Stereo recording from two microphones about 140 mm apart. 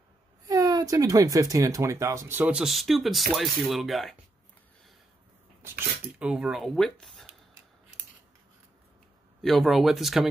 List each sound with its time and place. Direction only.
0.5 s speech: 25° right (ahead or behind); by 4.2 s centre (ahead or behind)
6.1 s speech: 5° right (ahead or behind)
9.4 s speech: centre (ahead or behind)